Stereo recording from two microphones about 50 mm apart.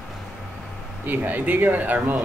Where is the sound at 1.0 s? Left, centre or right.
Right.